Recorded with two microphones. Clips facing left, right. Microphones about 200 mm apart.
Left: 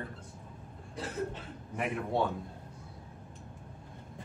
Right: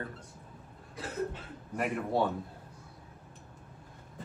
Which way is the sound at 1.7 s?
Centre (ahead or behind).